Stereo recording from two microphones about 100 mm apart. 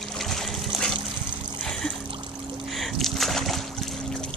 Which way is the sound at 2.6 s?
Centre (ahead or behind).